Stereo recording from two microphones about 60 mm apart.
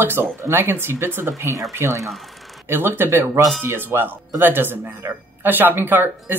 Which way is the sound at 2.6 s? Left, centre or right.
Right.